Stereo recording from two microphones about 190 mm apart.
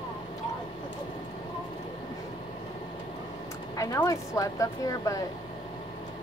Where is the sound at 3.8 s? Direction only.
20° left (ahead or behind).